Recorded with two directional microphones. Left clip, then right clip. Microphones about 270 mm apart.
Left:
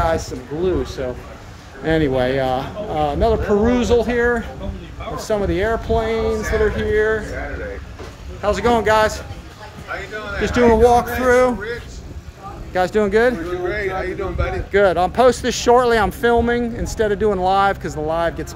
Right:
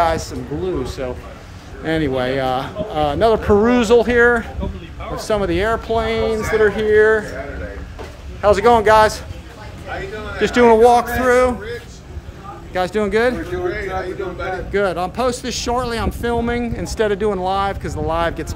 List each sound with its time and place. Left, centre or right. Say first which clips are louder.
0.0 s speech: right 2 dB; centre
8.4 s speech: right 5 dB; centre
10.4 s speech: right 3 dB; centre
12.7 s speech: left 2 dB; centre